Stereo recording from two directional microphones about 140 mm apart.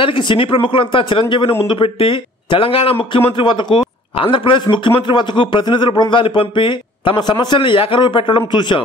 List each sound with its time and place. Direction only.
0.0 s speech: 35° left (ahead or behind)